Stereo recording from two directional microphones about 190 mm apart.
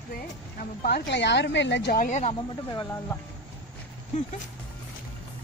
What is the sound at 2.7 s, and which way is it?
Speech, 20° left (ahead or behind).